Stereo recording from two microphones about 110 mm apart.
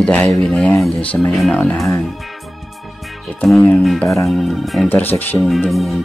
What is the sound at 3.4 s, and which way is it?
Speech, centre (ahead or behind).